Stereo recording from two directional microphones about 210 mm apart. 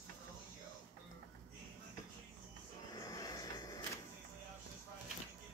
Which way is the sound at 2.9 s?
15° left (ahead or behind).